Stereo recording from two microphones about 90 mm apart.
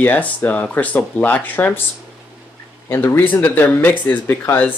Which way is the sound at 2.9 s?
25° left (ahead or behind).